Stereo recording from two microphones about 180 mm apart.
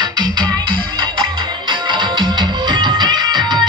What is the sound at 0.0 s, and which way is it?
Music, 25° right (ahead or behind).